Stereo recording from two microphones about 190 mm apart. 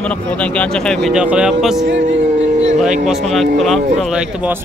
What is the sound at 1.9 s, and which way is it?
Speech, 75° right (ahead or behind).